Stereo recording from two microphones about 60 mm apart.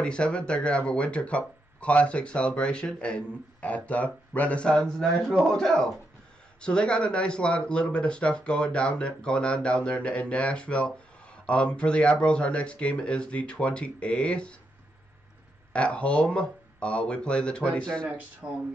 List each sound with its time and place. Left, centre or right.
0.0 s speech: centre
15.7 s speech: left
18.0 s speech: centre